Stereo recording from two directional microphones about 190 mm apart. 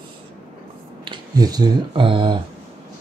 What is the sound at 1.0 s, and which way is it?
Speech, 20° right (ahead or behind).